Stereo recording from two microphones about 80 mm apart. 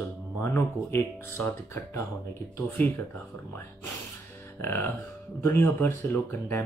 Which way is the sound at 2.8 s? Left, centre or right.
Left.